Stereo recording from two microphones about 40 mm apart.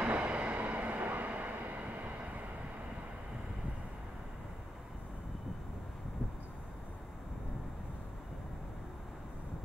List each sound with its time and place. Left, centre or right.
0.0 s vehicle: right